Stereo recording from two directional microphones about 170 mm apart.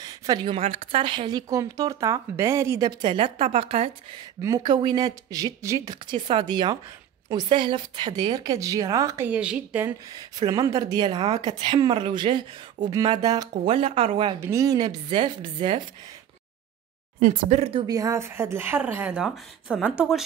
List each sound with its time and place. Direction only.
0.0 s a woman's voice: 25° right (ahead or behind); by 9.9 s 10° right (ahead or behind)
10.1 s a woman's voice: 25° right (ahead or behind)
13.5 s speech: 35° right (ahead or behind)
14.4 s a woman's voice: 20° right (ahead or behind)
17.2 s speech: 45° right (ahead or behind)
17.7 s speech: 20° right (ahead or behind); by 20.2 s centre (ahead or behind)